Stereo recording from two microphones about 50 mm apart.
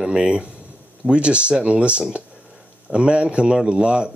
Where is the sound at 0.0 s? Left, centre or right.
Centre.